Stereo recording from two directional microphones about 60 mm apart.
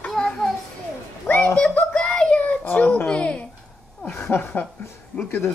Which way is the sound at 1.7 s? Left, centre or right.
Left.